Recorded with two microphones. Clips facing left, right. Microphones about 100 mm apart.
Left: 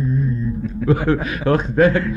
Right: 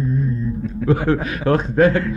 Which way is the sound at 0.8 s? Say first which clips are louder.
Even; 35° right (ahead or behind).